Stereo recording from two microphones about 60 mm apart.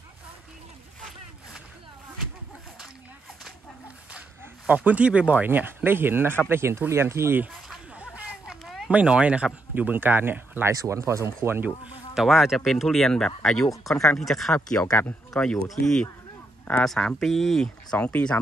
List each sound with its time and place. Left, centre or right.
4.6 s speech: right
8.0 s a sound: right
8.5 s a sound: centre
8.9 s speech: centre; by 10.7 s right
10.7 s speech: right
11.4 s speech: right
12.1 s speech: centre
17.9 s speech: left